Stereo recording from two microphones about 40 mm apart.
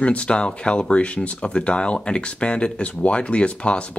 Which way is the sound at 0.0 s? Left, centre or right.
Left.